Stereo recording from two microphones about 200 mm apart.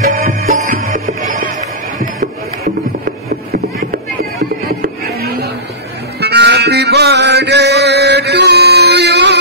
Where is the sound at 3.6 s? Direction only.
45° right (ahead or behind).